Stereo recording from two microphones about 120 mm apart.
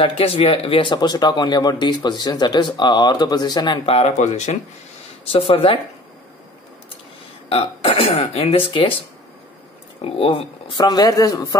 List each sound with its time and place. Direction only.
0.0 s speech: 55° left (ahead or behind)
0.9 s speech: 35° left (ahead or behind)
3.8 s speech: 65° left (ahead or behind)
5.2 s speech: 50° left (ahead or behind)
7.4 s speech: 55° left (ahead or behind)
10.0 s speech: 50° left (ahead or behind)
10.9 s speech: 30° left (ahead or behind)